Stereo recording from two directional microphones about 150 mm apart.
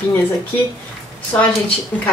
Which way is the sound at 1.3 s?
10° left (ahead or behind).